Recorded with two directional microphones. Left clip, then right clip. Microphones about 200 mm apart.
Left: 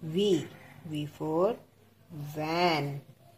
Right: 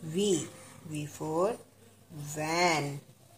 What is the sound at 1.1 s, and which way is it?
A woman's voice, 15° left (ahead or behind).